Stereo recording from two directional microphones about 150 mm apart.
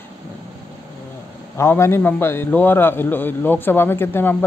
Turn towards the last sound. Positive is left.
turn(degrees=15)  # may be behind; listen again after turning